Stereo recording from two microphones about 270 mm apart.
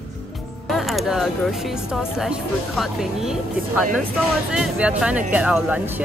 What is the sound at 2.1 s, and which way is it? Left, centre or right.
Speech, centre.